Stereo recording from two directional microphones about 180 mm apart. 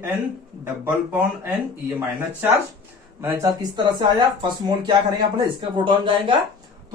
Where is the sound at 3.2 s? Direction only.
15° right (ahead or behind).